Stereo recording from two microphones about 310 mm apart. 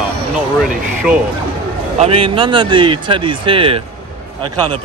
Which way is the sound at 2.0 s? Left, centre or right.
Centre.